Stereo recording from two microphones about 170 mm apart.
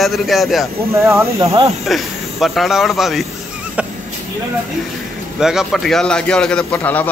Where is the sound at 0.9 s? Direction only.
15° right (ahead or behind).